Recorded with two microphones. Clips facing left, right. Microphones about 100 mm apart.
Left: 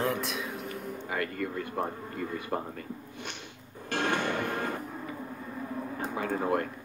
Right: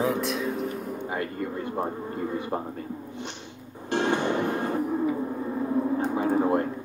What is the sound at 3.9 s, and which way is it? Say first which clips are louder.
Music: right 5 dB; 20° right (ahead or behind).